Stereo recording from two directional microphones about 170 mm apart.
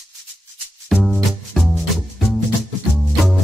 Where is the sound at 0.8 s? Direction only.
Centre (ahead or behind).